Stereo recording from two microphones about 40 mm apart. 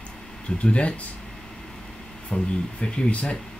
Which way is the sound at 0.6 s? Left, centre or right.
Left.